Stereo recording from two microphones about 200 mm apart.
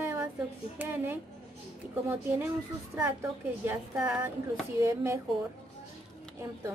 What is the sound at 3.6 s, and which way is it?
Speech, 10° right (ahead or behind).